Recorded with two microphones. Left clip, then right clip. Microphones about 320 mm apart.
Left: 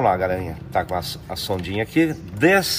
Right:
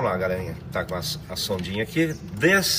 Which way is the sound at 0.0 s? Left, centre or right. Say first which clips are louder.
Left 5 dB; left.